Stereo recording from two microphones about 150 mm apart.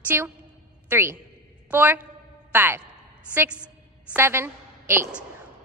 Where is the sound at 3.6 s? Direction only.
10° right (ahead or behind).